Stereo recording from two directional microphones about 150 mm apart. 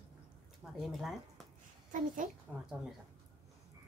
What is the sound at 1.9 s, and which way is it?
Speech, 60° right (ahead or behind).